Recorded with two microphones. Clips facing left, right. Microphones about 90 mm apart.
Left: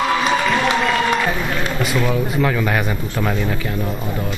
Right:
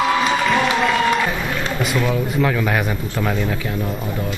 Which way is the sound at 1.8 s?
Centre (ahead or behind).